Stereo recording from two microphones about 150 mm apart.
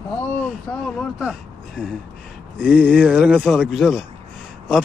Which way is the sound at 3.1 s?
5° right (ahead or behind).